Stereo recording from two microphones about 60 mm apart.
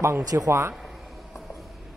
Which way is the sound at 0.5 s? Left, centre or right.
Right.